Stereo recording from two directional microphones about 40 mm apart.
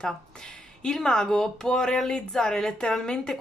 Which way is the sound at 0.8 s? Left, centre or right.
Centre.